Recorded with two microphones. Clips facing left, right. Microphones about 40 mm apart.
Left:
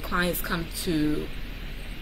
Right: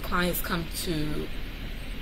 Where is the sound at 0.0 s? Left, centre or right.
Centre.